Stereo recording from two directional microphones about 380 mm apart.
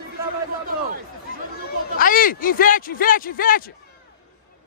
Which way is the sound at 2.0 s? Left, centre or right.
Left.